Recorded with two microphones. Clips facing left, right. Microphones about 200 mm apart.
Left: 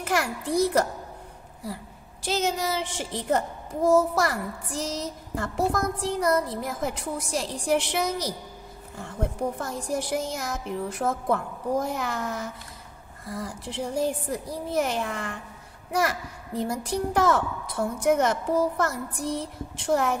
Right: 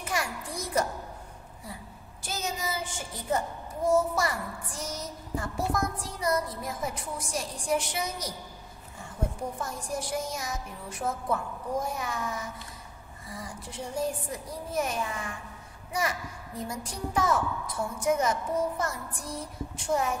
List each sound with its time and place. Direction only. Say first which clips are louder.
0.0 s a child's voice: left 6 dB; 75° left (ahead or behind)
2.2 s a woman's voice: left 8 dB; 75° left (ahead or behind)